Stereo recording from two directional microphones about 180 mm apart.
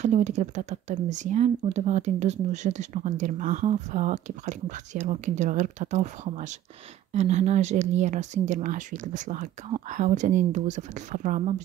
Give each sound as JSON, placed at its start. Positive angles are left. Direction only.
{"t": 0.0, "sound": "speech", "side_deg": -40}